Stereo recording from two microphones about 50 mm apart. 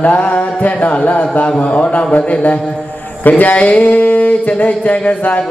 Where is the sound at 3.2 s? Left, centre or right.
Left.